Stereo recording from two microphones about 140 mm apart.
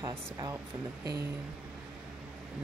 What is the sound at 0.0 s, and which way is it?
Speech, 25° right (ahead or behind).